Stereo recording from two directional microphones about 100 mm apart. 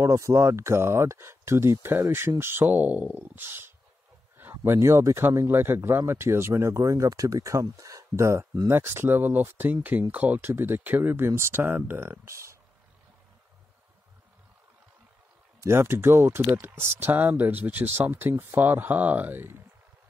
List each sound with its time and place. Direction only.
0.0 s speech: 30° right (ahead or behind)
15.6 s speech: 25° right (ahead or behind)